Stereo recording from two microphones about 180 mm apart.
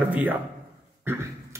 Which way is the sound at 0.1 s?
10° right (ahead or behind).